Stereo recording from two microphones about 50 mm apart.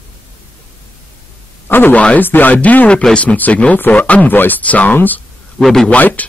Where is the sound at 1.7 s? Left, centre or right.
Left.